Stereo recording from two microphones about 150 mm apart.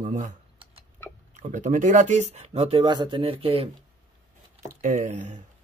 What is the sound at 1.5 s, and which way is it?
Speech, 60° right (ahead or behind).